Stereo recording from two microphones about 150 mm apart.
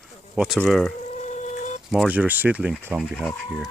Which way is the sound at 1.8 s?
5° right (ahead or behind).